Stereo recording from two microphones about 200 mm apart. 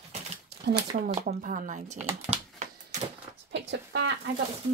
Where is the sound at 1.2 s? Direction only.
40° right (ahead or behind).